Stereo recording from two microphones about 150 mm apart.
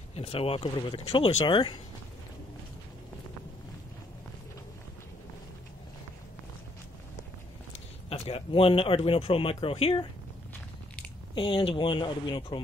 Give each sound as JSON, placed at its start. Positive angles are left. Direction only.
{"t": 0.1, "sound": "speech", "side_deg": 40}
{"t": 8.1, "sound": "speech", "side_deg": 40}
{"t": 11.3, "sound": "speech", "side_deg": 35}